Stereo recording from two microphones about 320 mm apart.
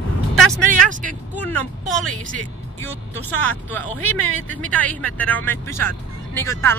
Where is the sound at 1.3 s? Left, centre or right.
Centre.